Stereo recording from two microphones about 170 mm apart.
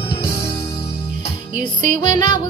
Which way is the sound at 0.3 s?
15° left (ahead or behind).